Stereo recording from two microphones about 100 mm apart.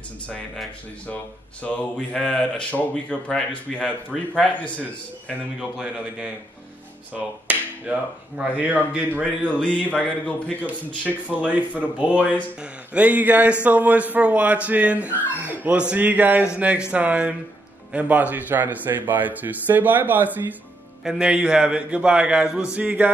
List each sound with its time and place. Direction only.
1.6 s speech: 10° left (ahead or behind)
4.1 s a man's voice: 5° right (ahead or behind)
5.4 s a man's voice: 10° right (ahead or behind)
7.5 s finger snapping: 15° right (ahead or behind)
7.9 s a man's voice: 15° right (ahead or behind)
9.5 s speech: 15° left (ahead or behind)
11.3 s a man's voice: 15° right (ahead or behind)
21.0 s a man's voice: 5° right (ahead or behind)